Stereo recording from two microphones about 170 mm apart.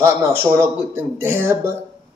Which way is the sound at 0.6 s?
15° right (ahead or behind).